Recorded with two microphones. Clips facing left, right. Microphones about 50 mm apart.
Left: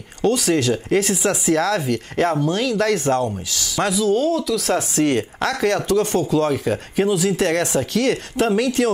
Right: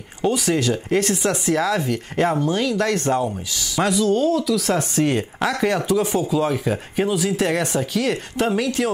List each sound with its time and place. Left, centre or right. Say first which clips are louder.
0.2 s speech: left 2 dB; centre